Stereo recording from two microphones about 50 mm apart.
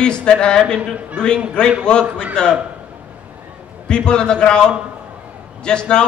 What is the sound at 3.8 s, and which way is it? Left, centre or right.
A man's voice, centre.